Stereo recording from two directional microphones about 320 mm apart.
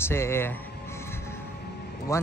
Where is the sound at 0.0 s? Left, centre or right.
Centre.